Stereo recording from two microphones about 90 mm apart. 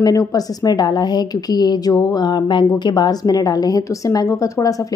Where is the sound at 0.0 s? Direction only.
45° left (ahead or behind).